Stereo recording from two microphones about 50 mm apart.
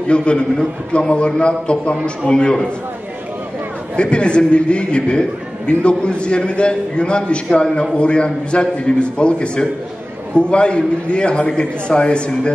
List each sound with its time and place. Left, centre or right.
0.1 s a man's voice: left
3.9 s a man's voice: left